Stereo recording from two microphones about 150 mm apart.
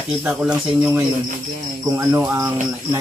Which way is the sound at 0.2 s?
5° right (ahead or behind).